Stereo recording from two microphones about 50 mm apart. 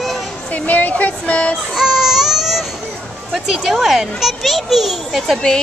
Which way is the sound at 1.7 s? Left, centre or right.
Centre.